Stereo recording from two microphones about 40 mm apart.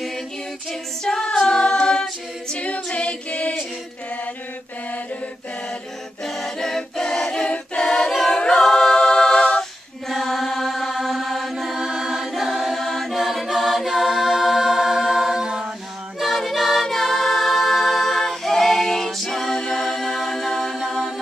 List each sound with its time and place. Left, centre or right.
1.0 s a capella: centre
2.5 s a capella: left
6.2 s a capella: centre
7.4 s a capella: left
10.0 s mantra: centre
10.9 s chant: centre
16.2 s choir: centre
16.8 s a capella: centre